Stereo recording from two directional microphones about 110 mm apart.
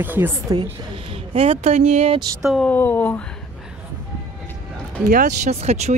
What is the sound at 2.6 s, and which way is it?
Speech, 20° left (ahead or behind).